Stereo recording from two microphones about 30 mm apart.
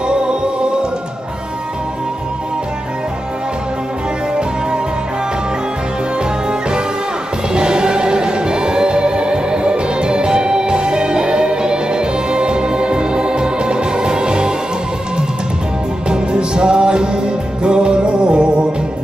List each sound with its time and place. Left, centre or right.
0.1 s music: right
7.5 s music: right
16.1 s music: right